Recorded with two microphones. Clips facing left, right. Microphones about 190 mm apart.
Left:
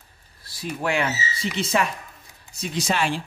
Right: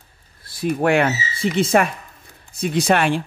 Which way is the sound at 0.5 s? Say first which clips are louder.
Right 8 dB; 55° right (ahead or behind).